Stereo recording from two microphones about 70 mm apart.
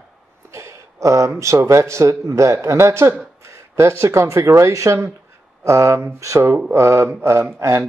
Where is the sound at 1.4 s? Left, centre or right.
Right.